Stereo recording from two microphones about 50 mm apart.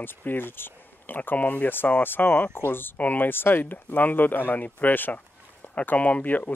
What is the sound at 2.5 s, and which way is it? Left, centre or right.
Speech, left.